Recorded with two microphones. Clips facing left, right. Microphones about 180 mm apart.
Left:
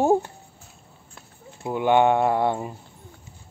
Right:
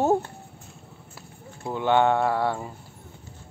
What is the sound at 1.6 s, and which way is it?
Speech, 15° left (ahead or behind).